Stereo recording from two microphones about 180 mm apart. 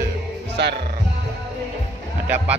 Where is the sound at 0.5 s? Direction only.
70° right (ahead or behind).